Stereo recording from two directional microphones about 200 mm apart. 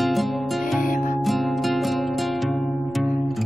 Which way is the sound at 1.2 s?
Centre (ahead or behind).